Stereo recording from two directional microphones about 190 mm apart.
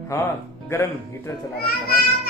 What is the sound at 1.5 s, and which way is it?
Speech, 55° left (ahead or behind).